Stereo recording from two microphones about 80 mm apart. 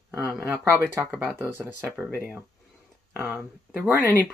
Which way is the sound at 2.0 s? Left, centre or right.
Centre.